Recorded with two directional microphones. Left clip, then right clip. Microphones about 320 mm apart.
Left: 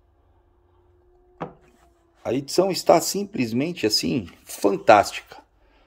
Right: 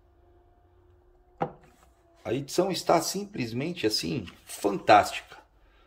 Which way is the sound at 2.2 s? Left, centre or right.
Centre.